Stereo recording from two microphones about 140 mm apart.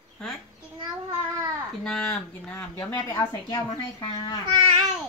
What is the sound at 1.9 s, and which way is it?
Speech, 10° left (ahead or behind).